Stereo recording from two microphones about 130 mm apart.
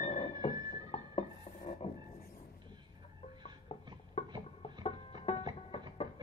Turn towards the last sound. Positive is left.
turn(degrees=50)  # may be behind; listen again after turning